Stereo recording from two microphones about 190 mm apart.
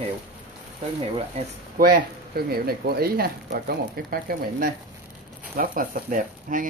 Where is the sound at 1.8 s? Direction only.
50° right (ahead or behind).